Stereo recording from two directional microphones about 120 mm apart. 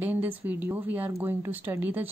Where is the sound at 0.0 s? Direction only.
15° right (ahead or behind).